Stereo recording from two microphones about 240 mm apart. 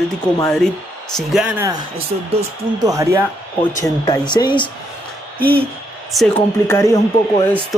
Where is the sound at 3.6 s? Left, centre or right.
Centre.